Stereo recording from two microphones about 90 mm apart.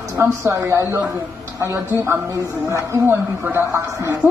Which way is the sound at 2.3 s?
35° right (ahead or behind).